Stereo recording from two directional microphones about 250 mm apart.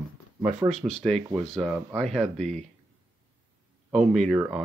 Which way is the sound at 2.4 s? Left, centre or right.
Right.